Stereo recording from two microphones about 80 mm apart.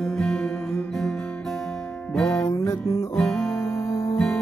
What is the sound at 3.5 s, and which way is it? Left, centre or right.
Music, left.